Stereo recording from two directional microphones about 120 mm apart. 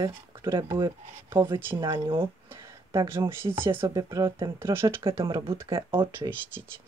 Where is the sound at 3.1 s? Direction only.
20° right (ahead or behind).